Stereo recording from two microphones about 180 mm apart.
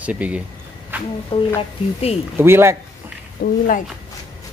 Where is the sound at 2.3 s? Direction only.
15° right (ahead or behind).